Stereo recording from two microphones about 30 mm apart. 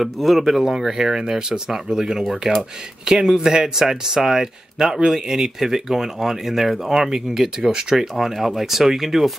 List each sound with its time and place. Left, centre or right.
0.0 s speech: centre
2.4 s speech: right
3.1 s speech: right; by 7.0 s centre
7.0 s speech: centre